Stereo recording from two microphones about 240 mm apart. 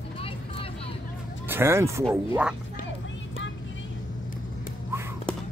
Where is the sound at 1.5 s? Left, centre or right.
Centre.